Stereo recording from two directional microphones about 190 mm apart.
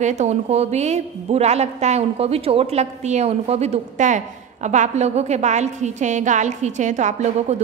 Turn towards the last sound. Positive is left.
turn(degrees=-35)  # may be behind; listen again after turning